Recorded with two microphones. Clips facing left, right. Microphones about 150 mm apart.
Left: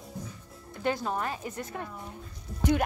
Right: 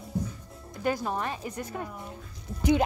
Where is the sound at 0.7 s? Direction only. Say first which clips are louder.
Right 1 dB; 10° right (ahead or behind).